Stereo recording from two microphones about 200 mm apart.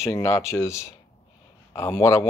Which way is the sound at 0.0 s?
15° left (ahead or behind).